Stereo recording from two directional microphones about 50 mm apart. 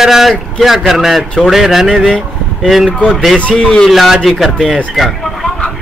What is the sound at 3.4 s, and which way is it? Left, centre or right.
Speech, centre.